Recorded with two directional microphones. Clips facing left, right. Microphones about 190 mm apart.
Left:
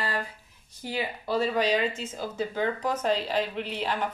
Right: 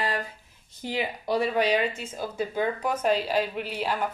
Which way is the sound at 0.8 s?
20° right (ahead or behind).